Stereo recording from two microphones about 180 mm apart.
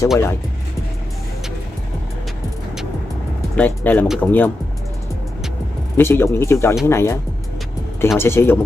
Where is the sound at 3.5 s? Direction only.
10° left (ahead or behind).